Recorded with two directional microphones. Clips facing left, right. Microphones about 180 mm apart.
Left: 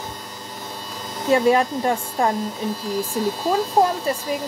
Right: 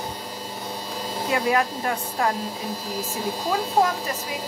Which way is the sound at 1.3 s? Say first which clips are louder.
Left 6 dB; 25° left (ahead or behind).